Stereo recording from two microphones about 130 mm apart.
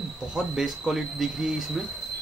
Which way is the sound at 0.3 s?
5° right (ahead or behind).